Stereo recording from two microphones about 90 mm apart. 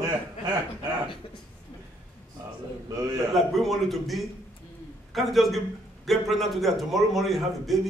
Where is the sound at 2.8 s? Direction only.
45° right (ahead or behind).